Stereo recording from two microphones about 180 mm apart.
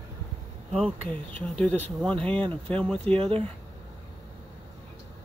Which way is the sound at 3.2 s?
30° right (ahead or behind).